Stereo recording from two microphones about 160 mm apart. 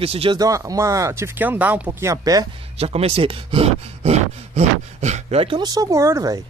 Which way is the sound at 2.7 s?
40° right (ahead or behind).